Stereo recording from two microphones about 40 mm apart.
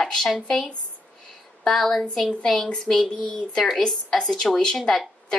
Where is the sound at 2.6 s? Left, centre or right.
Centre.